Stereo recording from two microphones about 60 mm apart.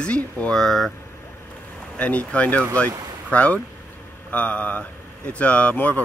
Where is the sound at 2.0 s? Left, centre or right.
Left.